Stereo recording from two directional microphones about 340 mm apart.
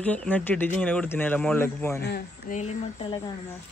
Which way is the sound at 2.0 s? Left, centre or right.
Left.